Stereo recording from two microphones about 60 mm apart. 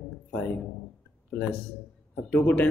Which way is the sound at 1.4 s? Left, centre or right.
Left.